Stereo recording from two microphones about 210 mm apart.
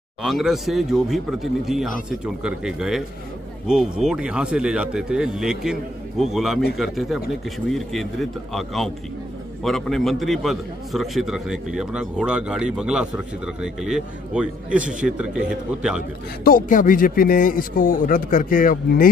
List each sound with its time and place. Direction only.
0.2 s a man's voice: centre (ahead or behind)
16.4 s a man's voice: 40° left (ahead or behind)